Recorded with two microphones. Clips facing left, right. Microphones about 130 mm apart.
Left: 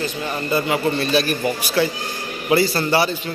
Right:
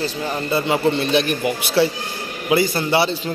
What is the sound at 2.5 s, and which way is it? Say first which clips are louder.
Speech: even; 15° right (ahead or behind).